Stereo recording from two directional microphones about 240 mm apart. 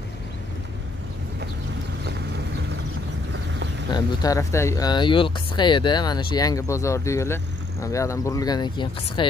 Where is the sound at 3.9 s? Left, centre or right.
Centre.